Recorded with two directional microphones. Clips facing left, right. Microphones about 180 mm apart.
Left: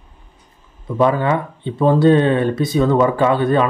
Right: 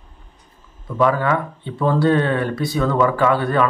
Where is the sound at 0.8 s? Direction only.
25° left (ahead or behind).